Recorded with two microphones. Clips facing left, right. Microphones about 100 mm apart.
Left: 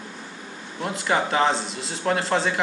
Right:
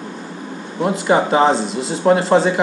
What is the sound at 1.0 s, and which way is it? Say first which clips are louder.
Speech: right 7 dB; 20° right (ahead or behind).